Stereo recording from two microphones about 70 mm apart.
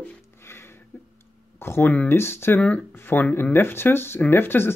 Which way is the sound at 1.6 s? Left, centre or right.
Left.